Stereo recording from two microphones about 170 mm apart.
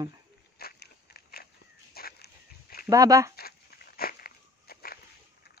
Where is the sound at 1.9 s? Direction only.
65° left (ahead or behind).